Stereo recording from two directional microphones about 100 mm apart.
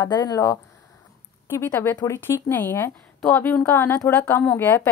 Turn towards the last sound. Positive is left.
turn(degrees=20)  # may be behind; listen again after turning